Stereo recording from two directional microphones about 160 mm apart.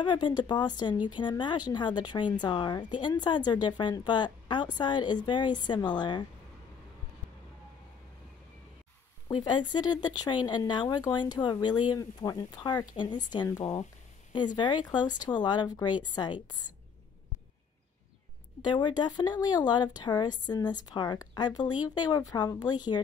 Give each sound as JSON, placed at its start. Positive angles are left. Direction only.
{"t": 0.0, "sound": "speech", "side_deg": 30}
{"t": 9.3, "sound": "speech", "side_deg": 30}
{"t": 18.7, "sound": "speech", "side_deg": 30}